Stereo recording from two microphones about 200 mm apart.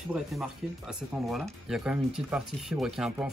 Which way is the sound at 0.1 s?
5° right (ahead or behind).